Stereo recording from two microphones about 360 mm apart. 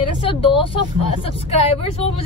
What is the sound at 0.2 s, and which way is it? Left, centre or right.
Speech, centre.